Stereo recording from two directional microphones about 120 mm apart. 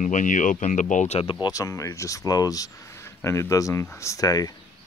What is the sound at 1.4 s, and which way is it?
Speech, 30° left (ahead or behind).